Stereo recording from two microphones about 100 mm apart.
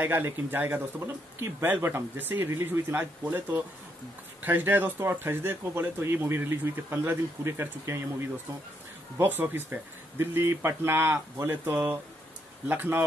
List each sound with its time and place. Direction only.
0.0 s speech: 20° right (ahead or behind)